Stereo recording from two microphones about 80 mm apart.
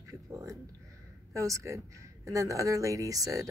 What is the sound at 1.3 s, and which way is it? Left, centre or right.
Speech, right.